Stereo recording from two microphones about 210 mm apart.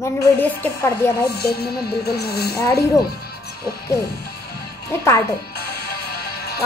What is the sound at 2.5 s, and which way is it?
Speech, 15° left (ahead or behind).